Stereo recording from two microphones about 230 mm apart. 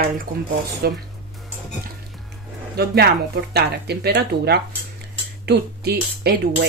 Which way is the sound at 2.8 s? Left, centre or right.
Right.